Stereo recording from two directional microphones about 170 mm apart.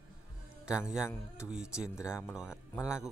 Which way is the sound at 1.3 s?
5° right (ahead or behind).